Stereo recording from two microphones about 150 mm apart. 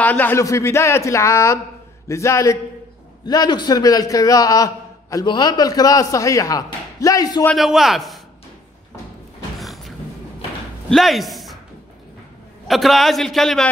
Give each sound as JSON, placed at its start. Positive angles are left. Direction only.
{"t": 0.0, "sound": "a man's voice", "side_deg": 10}
{"t": 7.5, "sound": "a man's voice", "side_deg": 0}
{"t": 9.6, "sound": "a sound", "side_deg": 0}
{"t": 10.9, "sound": "speech", "side_deg": 0}
{"t": 12.6, "sound": "a man's voice", "side_deg": 0}